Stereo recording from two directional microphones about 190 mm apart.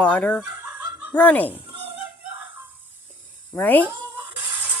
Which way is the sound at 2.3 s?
10° right (ahead or behind).